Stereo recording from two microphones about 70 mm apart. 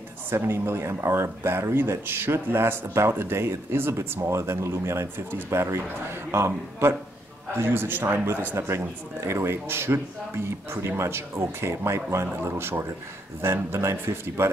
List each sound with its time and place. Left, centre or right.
0.3 s speech: right